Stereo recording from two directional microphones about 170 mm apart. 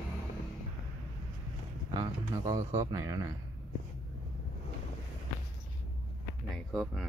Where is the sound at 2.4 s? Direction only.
20° right (ahead or behind).